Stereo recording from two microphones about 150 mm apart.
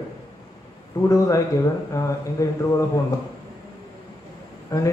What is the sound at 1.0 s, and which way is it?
Speech, 20° left (ahead or behind).